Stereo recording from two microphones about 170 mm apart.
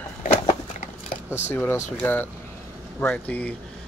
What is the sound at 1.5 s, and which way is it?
Speech, 10° left (ahead or behind).